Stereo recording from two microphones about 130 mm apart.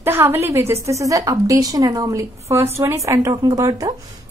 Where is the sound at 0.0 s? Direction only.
20° right (ahead or behind).